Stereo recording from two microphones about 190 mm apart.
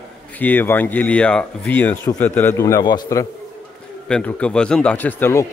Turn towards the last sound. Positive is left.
turn(degrees=15)  # may be behind; listen again after turning